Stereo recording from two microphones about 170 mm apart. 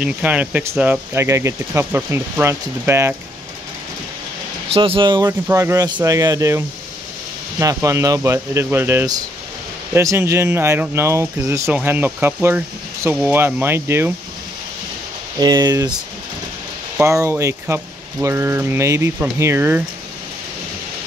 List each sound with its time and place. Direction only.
0.0 s speech: 10° right (ahead or behind)
4.6 s speech: 35° right (ahead or behind)
5.5 s speech: 15° right (ahead or behind)
15.3 s speech: 25° right (ahead or behind)
16.9 s speech: 15° right (ahead or behind)